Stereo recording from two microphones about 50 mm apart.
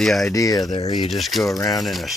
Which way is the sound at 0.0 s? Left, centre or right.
Centre.